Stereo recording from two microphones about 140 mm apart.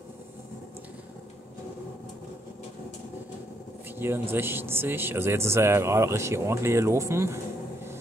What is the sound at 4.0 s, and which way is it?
Speech, 15° right (ahead or behind).